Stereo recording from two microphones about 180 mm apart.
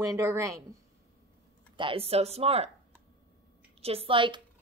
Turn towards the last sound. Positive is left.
turn(degrees=-25)  # may be behind; listen again after turning